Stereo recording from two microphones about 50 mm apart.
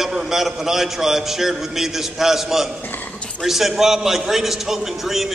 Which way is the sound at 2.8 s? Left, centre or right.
Left.